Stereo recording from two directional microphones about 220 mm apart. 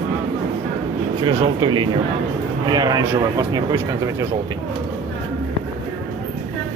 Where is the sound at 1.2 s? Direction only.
20° right (ahead or behind).